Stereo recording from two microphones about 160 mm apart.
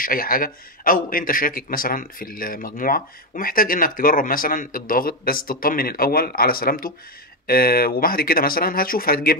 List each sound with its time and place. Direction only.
0.0 s a man's voice: 65° left (ahead or behind)